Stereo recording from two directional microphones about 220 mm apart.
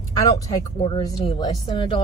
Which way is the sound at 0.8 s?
20° left (ahead or behind).